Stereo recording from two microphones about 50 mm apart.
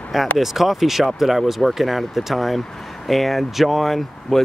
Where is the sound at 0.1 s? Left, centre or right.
Centre.